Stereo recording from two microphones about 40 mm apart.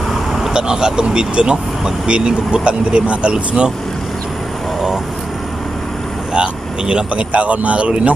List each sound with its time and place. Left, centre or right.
0.1 s vehicle: centre
0.5 s speech: centre
6.3 s speech: right